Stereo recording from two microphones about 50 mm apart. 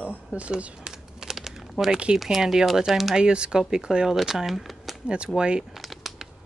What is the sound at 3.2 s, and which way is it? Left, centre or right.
Speech, centre.